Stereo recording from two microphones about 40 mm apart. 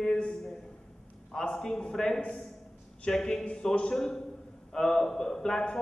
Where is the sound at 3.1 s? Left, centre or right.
Centre.